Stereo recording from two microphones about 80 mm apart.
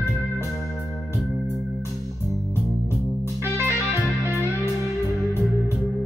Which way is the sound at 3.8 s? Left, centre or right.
Left.